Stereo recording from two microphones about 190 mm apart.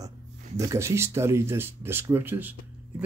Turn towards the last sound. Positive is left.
turn(degrees=-10)  # may be behind; listen again after turning